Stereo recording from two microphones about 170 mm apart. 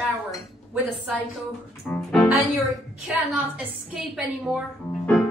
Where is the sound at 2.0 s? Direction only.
Centre (ahead or behind).